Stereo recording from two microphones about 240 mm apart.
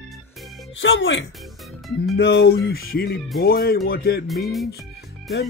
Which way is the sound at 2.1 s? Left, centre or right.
Left.